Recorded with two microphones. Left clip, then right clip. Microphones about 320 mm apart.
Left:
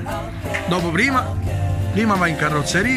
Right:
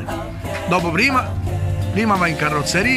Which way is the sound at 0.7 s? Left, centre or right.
Centre.